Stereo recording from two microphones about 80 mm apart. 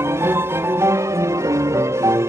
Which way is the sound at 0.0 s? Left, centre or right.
Right.